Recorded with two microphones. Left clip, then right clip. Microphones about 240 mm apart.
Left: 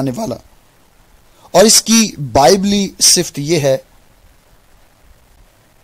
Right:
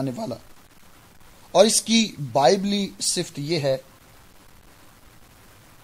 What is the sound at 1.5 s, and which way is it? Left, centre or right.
Speech, left.